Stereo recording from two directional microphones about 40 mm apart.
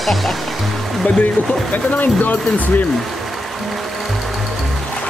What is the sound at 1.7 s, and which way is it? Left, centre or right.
Speech, left.